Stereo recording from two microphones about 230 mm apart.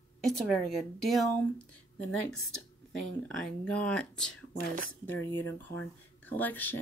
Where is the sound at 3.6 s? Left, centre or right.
Centre.